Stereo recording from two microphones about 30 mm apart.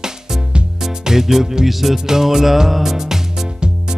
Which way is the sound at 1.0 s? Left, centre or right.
Centre.